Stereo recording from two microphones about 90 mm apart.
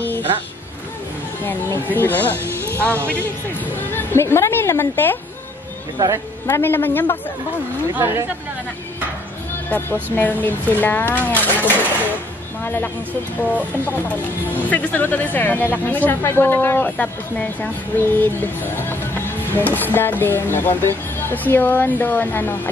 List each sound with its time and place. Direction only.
1.4 s a woman's voice: 25° left (ahead or behind)
6.4 s a woman's voice: 25° left (ahead or behind)
7.9 s speech: 30° right (ahead or behind)
9.7 s a woman's voice: 20° left (ahead or behind)